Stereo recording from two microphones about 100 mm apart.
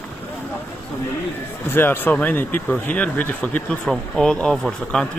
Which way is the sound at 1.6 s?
20° left (ahead or behind).